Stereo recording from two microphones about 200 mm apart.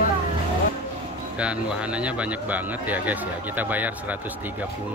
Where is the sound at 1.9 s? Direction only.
5° right (ahead or behind).